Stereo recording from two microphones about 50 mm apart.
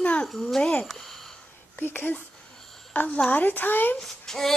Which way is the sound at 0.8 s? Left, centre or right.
Centre.